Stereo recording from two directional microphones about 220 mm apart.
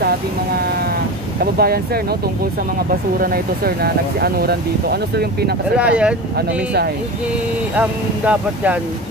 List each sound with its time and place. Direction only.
1.4 s speech: 45° right (ahead or behind)
3.2 s speech: 45° right (ahead or behind)
5.8 s speech: 5° right (ahead or behind)
6.3 s speech: 45° right (ahead or behind)
7.7 s speech: 5° right (ahead or behind)